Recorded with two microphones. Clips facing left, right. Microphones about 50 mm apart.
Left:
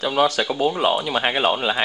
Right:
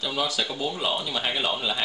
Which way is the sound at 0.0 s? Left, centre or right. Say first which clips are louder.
Left 8 dB; left.